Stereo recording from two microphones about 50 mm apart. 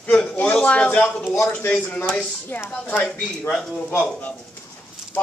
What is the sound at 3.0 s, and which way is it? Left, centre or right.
Speech, centre.